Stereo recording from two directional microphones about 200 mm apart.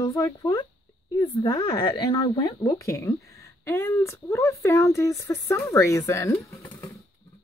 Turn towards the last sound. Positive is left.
turn(degrees=15)  # may be behind; listen again after turning